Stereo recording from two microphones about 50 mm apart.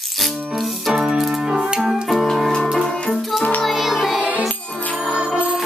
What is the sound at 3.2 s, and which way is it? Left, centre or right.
Music, centre.